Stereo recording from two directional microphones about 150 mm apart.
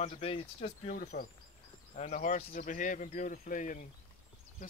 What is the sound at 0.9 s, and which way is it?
Speech, 75° left (ahead or behind).